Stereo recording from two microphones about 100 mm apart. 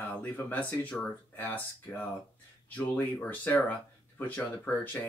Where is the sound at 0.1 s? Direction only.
15° left (ahead or behind).